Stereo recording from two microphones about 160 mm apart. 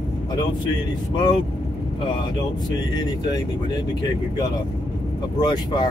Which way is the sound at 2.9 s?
25° left (ahead or behind).